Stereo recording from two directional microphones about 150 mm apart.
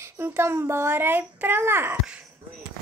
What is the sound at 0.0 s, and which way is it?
Speech, 15° right (ahead or behind).